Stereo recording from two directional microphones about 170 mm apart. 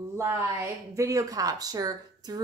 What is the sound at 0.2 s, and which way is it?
A woman's voice, 15° right (ahead or behind).